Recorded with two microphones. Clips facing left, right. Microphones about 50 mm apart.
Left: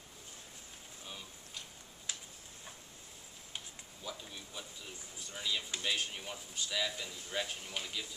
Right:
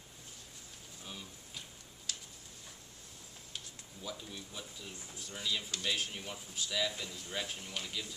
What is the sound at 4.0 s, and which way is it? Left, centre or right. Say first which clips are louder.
Speech: right 1 dB; centre.